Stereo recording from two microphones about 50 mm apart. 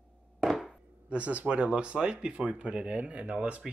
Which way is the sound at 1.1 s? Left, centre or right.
Right.